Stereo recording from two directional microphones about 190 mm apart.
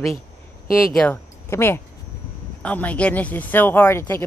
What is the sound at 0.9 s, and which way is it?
A woman's voice, 5° left (ahead or behind).